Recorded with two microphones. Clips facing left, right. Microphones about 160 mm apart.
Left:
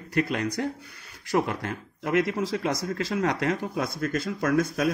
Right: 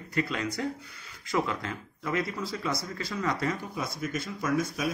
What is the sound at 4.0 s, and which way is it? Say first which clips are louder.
Speech: left 5 dB; 90° left.